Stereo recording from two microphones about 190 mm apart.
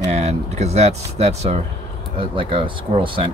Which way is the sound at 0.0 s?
35° right (ahead or behind).